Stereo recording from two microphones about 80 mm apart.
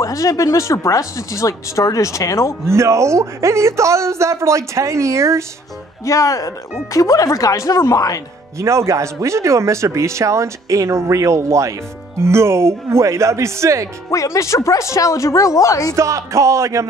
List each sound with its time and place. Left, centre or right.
0.0 s speech: left
2.6 s speech: right
6.0 s speech: left
8.5 s speech: right
14.1 s speech: left
15.9 s speech: right